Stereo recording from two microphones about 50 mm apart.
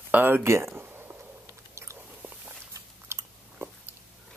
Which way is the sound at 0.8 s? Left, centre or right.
Right.